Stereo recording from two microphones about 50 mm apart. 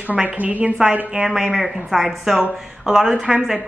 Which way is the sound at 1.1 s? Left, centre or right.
Centre.